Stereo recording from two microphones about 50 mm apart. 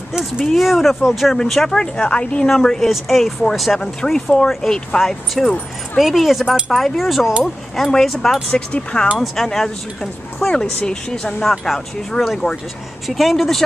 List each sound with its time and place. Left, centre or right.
0.2 s speech: centre; by 2.5 s left
2.5 s speech: centre
8.5 s speech: centre
9.2 s speech: centre